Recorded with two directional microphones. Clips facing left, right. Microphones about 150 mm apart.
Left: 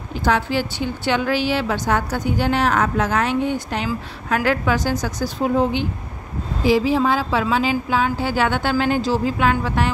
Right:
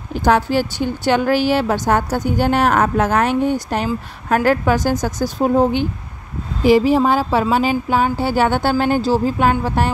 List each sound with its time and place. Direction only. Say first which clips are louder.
0.1 s a woman's voice: right 4 dB; 45° right (ahead or behind)